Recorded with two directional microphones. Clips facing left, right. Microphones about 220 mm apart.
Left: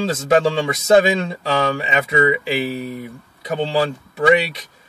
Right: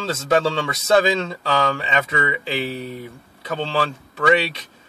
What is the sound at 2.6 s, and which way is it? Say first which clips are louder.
Speech: left 3 dB; 10° left (ahead or behind).